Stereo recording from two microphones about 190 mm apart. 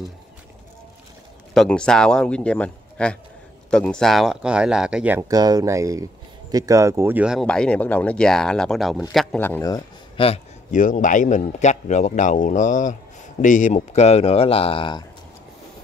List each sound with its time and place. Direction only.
1.5 s speech: 5° left (ahead or behind)
5.3 s speech: 20° right (ahead or behind); by 9.4 s centre (ahead or behind)
9.4 s speech: 15° left (ahead or behind)
10.2 s a man's voice: 35° left (ahead or behind)